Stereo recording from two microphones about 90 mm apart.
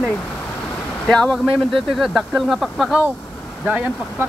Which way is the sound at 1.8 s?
Centre (ahead or behind).